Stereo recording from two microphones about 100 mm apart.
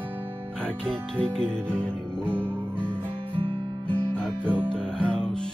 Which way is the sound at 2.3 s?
20° right (ahead or behind).